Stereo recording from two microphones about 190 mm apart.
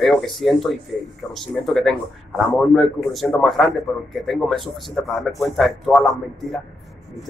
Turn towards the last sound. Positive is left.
turn(degrees=0)  # may be behind; listen again after turning